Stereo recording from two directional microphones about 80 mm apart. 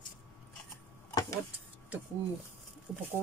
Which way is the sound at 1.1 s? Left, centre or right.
Left.